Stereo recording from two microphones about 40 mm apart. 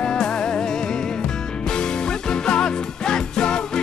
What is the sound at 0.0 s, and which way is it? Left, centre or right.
Music, centre.